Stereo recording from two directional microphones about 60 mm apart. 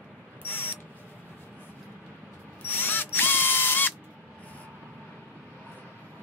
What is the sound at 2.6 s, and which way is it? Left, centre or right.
Ratchet, left.